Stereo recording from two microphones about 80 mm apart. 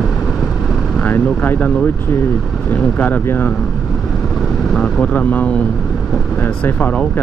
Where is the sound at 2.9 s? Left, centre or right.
Centre.